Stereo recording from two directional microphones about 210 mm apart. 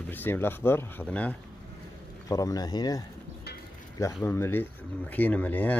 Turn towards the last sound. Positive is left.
turn(degrees=5)  # may be behind; listen again after turning